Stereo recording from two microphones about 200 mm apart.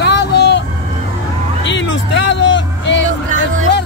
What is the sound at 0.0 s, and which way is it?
Vehicle, 60° left (ahead or behind).